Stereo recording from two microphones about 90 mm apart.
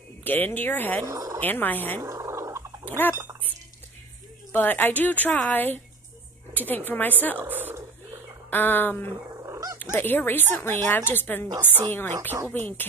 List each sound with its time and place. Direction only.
0.2 s a woman's voice: 20° left (ahead or behind)
1.0 s speech: 40° right (ahead or behind)
1.4 s a woman's voice: 20° left (ahead or behind)
2.0 s gargling: 35° right (ahead or behind)
4.5 s a woman's voice: 20° left (ahead or behind)
7.4 s speech: 20° right (ahead or behind)
8.5 s a woman's voice: 20° left (ahead or behind)
9.4 s dog: 35° right (ahead or behind)
9.8 s a woman's voice: 20° left (ahead or behind)